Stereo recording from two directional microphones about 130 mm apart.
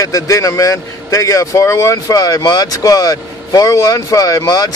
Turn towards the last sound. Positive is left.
turn(degrees=30)  # may be behind; listen again after turning